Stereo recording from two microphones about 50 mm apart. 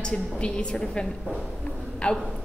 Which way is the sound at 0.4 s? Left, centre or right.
Centre.